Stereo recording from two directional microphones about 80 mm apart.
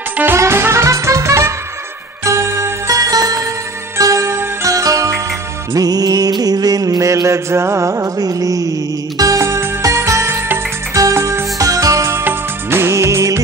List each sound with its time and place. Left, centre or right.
0.2 s music: right
2.9 s music: right
4.0 s music: right